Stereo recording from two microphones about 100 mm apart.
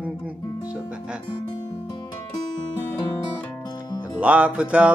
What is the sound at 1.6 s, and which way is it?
Music, 45° left (ahead or behind).